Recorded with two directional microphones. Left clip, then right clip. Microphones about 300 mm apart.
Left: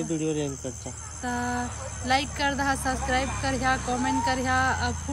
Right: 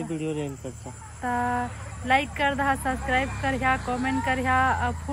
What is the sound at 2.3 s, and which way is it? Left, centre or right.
Speech, centre.